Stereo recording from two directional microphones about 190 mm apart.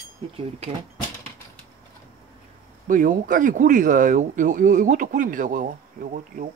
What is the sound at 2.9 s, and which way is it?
Speech, 45° right (ahead or behind).